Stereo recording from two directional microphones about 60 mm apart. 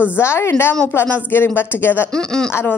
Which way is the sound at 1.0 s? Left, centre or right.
Left.